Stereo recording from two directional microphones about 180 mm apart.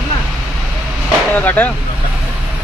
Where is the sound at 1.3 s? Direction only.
10° left (ahead or behind).